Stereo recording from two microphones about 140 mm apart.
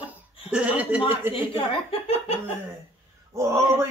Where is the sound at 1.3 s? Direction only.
40° left (ahead or behind).